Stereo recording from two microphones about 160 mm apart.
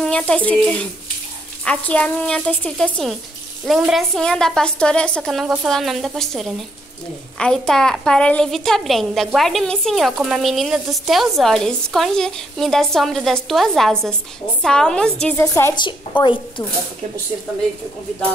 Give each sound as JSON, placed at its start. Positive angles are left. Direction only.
{"t": 0.0, "sound": "a woman's voice", "side_deg": 5}
{"t": 15.4, "sound": "a woman's voice", "side_deg": 20}
{"t": 16.2, "sound": "speech", "side_deg": 30}